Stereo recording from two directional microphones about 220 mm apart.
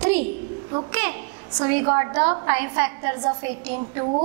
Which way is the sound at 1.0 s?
15° right (ahead or behind).